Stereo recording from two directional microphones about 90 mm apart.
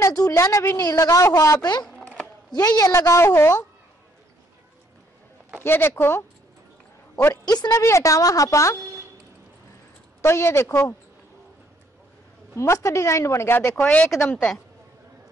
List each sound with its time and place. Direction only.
0.0 s a woman's voice: 45° left (ahead or behind)
0.7 s a woman's voice: 40° left (ahead or behind)
5.6 s speech: 25° left (ahead or behind)
7.4 s a woman's voice: 45° left (ahead or behind)
7.8 s a woman's voice: 35° left (ahead or behind)
10.2 s a woman's voice: 30° left (ahead or behind)
12.5 s a woman's voice: 35° left (ahead or behind)
13.7 s speech: 15° left (ahead or behind)